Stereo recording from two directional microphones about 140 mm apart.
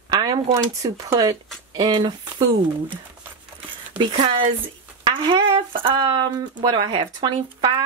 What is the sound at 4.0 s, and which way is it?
Speech, 35° right (ahead or behind).